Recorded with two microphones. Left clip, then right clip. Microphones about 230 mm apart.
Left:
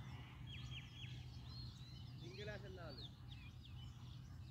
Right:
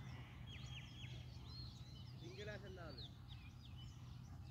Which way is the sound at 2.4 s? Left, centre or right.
Centre.